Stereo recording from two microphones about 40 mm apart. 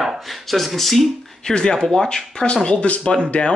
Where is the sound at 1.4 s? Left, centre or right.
Centre.